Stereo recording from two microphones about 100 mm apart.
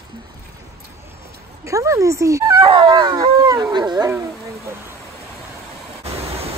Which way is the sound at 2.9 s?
45° right (ahead or behind).